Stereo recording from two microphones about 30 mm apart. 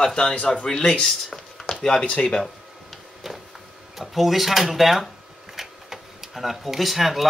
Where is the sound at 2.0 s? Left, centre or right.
Left.